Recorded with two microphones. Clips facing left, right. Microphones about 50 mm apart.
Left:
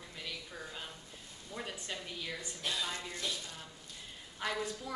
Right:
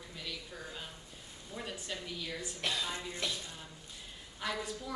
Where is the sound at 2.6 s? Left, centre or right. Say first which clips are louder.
Right 2 dB; right.